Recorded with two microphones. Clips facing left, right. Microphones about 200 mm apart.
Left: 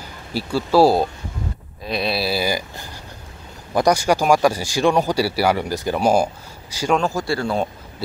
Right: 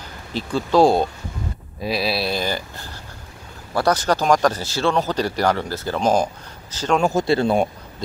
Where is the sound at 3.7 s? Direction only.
15° left (ahead or behind).